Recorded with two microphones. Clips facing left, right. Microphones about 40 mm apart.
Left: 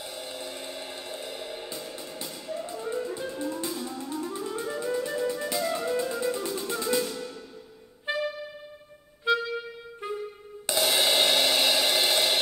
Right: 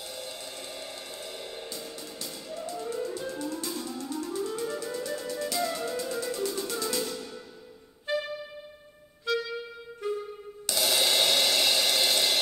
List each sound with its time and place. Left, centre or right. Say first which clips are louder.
0.0 s music: left 2 dB; centre
8.1 s music: even; left
9.3 s music: left 4 dB; left
10.0 s clarinet: right 2 dB; left
10.7 s cymbal: left 2 dB; centre